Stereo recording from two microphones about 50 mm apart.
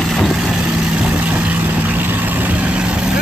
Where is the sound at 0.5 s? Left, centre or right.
Centre.